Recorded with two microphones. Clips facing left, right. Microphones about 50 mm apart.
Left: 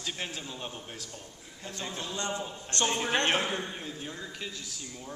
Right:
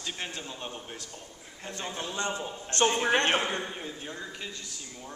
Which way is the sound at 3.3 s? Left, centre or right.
Centre.